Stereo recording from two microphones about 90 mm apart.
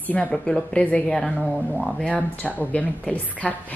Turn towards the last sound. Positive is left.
turn(degrees=15)  # may be behind; listen again after turning